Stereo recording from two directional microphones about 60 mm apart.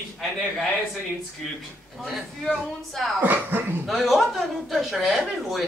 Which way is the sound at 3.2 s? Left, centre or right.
Right.